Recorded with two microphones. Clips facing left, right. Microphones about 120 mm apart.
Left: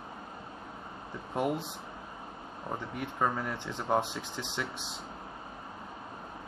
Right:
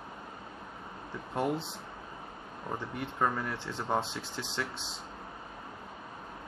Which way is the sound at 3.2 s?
15° left (ahead or behind).